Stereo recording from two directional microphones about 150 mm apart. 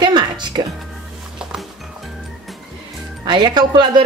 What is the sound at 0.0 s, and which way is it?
Music, 30° right (ahead or behind).